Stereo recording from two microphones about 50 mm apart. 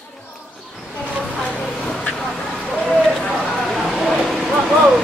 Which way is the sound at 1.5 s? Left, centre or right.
Centre.